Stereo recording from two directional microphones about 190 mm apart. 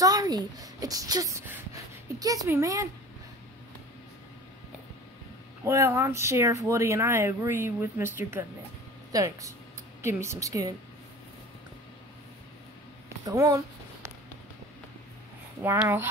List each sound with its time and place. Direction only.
0.0 s speech: 20° right (ahead or behind)
5.6 s speech: 15° right (ahead or behind)
13.2 s a sound: 20° right (ahead or behind)
15.6 s speech: 15° right (ahead or behind)